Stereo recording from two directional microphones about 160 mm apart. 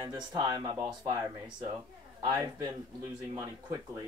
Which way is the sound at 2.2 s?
25° right (ahead or behind).